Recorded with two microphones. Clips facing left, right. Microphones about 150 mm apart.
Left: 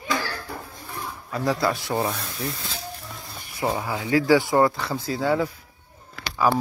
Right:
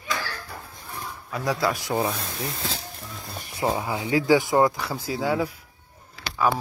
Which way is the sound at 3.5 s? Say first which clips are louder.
Even; 20° right (ahead or behind).